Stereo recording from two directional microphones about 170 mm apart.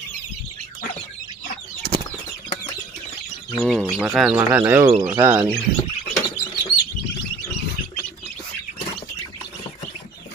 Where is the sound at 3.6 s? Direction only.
Centre (ahead or behind).